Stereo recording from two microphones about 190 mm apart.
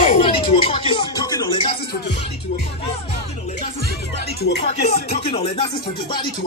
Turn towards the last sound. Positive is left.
turn(degrees=30)  # may be behind; listen again after turning